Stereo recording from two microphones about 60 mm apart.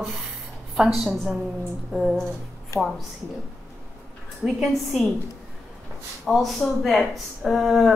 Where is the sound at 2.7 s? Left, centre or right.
Centre.